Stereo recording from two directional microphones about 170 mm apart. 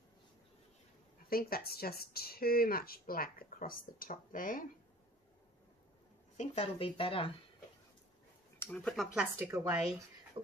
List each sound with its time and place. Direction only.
1.3 s speech: 65° left (ahead or behind)
6.3 s speech: 40° left (ahead or behind)
8.5 s a woman's voice: 5° left (ahead or behind)
10.4 s a sound: 30° right (ahead or behind)